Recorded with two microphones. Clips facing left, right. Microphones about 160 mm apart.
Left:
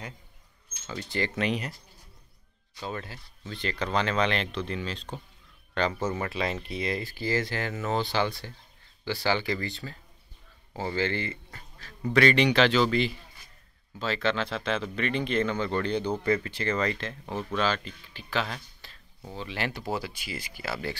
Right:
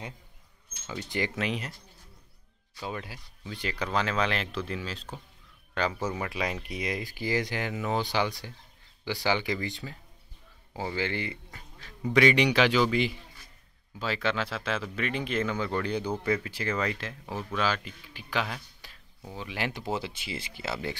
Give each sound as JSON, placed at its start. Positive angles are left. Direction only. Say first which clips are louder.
{"t": 0.8, "sound": "speech", "louder": "left 1 dB", "side_deg": -15}
{"t": 1.3, "sound": "speech", "louder": "left 3 dB", "side_deg": 0}
{"t": 2.8, "sound": "speech", "louder": "left 1 dB", "side_deg": -10}